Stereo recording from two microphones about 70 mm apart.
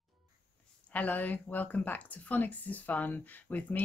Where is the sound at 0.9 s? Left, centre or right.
Left.